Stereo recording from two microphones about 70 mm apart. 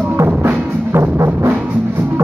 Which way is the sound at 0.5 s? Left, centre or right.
Right.